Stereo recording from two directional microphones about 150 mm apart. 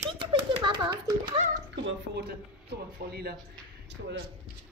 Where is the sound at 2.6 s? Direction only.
90° right.